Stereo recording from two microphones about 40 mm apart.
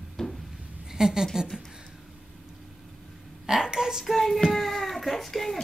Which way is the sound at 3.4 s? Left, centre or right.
Centre.